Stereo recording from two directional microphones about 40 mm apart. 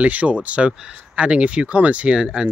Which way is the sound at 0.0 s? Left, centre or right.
Right.